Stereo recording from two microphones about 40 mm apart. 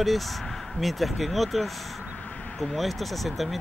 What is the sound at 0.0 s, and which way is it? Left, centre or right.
Speech, centre.